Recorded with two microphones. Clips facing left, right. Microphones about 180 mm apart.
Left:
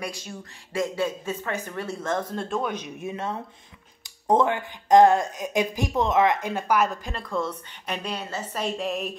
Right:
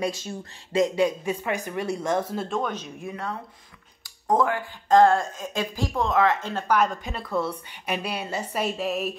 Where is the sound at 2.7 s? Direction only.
20° left (ahead or behind); by 9.1 s centre (ahead or behind).